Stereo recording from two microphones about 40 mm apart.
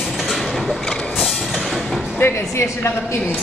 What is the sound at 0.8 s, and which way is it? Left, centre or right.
Vehicle, centre.